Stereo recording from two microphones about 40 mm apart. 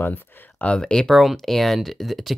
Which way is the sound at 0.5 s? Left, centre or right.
Left.